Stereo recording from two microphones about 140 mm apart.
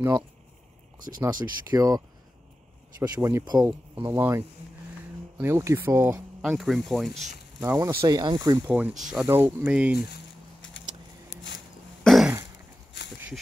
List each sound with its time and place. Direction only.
0.9 s speech: 75° right (ahead or behind)
1.2 s speech: 30° right (ahead or behind)
6.4 s speech: centre (ahead or behind)
7.6 s speech: 15° right (ahead or behind)
8.2 s speech: 30° right (ahead or behind)
8.6 s speech: 10° right (ahead or behind)
9.2 s speech: 15° right (ahead or behind)
12.0 s throat clearing: centre (ahead or behind)